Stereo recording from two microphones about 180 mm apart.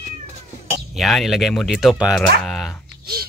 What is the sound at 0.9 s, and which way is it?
Speech, centre (ahead or behind).